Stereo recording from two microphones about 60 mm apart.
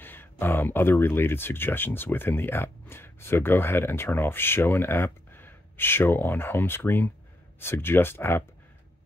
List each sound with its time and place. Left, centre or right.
0.0 s speech: left